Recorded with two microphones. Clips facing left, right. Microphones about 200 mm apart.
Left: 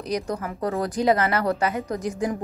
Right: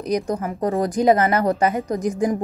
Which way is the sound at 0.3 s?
20° right (ahead or behind).